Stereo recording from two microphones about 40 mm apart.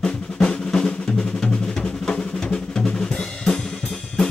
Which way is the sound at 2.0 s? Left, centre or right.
Left.